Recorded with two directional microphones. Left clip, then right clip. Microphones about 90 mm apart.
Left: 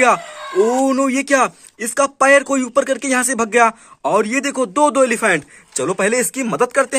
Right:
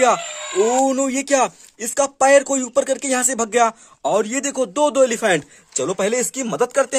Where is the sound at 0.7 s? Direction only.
25° right (ahead or behind).